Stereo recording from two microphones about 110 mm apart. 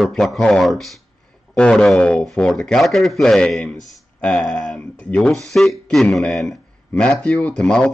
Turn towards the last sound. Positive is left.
turn(degrees=10)  # may be behind; listen again after turning